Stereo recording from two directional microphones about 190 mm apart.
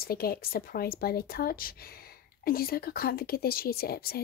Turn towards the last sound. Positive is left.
turn(degrees=50)  # may be behind; listen again after turning